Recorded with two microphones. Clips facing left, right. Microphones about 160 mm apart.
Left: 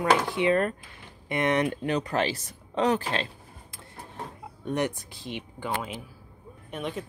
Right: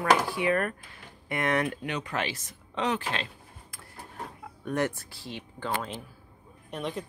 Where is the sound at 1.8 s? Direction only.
35° left (ahead or behind).